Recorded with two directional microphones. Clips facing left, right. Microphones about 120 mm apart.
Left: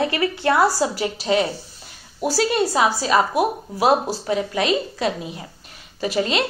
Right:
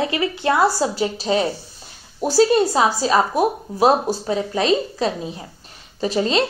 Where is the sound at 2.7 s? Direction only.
30° right (ahead or behind).